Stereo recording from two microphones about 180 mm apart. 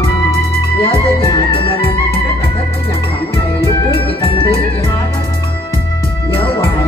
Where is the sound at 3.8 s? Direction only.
30° left (ahead or behind).